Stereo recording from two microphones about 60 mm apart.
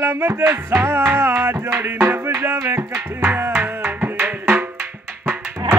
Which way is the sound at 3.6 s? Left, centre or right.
Right.